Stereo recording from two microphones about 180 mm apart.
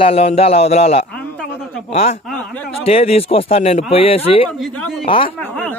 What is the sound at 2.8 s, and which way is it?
A man's voice, 35° left (ahead or behind).